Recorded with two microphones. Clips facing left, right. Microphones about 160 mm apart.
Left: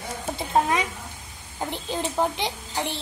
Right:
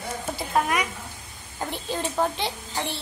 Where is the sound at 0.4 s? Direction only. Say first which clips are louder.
Left 2 dB; 25° left (ahead or behind).